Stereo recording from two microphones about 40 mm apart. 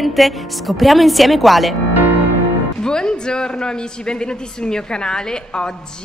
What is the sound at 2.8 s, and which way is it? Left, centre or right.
Speech, centre.